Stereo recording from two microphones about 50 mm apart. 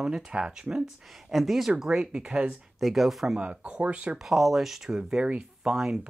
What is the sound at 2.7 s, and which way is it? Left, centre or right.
Speech, centre.